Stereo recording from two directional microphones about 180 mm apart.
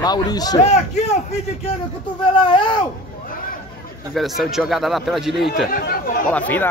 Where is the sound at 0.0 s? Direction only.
20° left (ahead or behind).